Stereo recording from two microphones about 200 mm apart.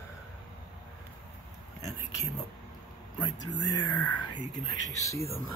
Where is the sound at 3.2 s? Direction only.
20° left (ahead or behind).